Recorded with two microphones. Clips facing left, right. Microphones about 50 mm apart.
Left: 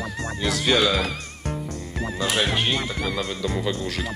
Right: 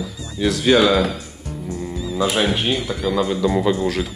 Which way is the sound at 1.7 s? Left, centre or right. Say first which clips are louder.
Right 4 dB; left.